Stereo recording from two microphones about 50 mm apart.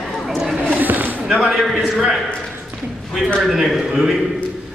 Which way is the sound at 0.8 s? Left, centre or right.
Right.